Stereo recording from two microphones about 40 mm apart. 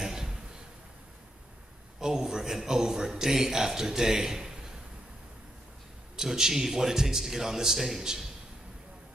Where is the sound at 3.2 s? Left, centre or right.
Centre.